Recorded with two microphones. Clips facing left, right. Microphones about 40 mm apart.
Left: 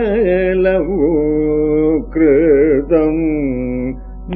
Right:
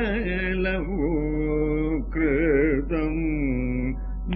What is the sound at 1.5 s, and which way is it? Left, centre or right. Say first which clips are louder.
Mantra: left 11 dB; centre.